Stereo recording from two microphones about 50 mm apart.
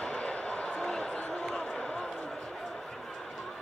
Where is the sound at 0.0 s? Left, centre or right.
Centre.